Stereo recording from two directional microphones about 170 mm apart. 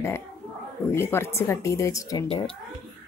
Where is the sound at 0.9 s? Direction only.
15° left (ahead or behind).